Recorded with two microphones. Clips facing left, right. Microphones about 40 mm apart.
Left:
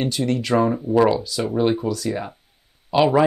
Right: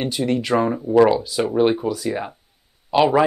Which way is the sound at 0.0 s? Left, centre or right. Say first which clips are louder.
Right 1 dB; centre.